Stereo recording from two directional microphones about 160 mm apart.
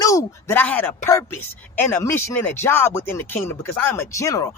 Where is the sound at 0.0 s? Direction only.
20° left (ahead or behind).